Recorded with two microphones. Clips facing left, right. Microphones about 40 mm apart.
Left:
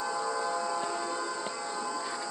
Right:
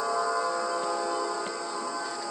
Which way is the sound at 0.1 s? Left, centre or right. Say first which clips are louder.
Right 5 dB; right.